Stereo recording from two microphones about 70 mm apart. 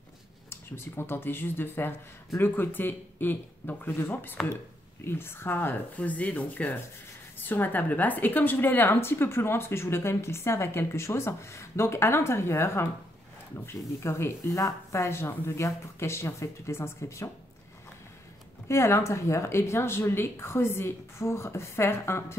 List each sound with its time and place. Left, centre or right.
0.5 s a woman's voice: left
18.7 s a woman's voice: left